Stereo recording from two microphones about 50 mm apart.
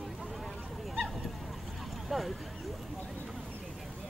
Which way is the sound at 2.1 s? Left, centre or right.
Centre.